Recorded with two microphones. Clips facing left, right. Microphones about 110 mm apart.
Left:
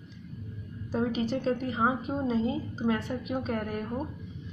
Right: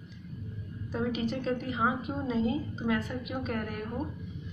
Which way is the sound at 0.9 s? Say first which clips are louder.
Left 3 dB; 30° left (ahead or behind).